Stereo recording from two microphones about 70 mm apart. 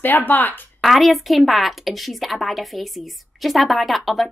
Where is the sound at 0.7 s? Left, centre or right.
Centre.